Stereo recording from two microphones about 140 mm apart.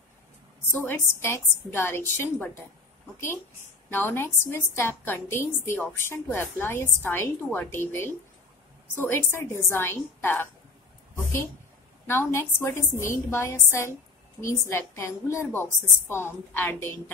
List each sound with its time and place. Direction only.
0.7 s a woman's voice: 15° left (ahead or behind)
3.9 s a woman's voice: 15° left (ahead or behind)
12.1 s a woman's voice: 20° left (ahead or behind)